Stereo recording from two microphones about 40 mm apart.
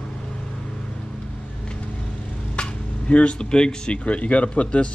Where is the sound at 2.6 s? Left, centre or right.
Left.